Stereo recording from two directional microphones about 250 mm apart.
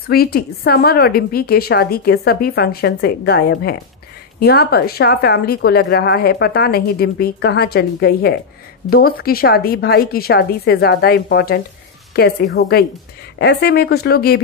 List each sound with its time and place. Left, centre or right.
0.1 s a woman's voice: left